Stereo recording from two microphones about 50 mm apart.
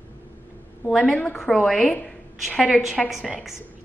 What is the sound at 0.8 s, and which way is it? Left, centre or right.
Speech, centre.